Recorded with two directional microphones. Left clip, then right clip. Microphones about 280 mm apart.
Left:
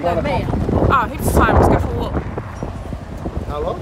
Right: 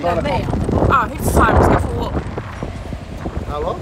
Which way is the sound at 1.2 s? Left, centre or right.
Centre.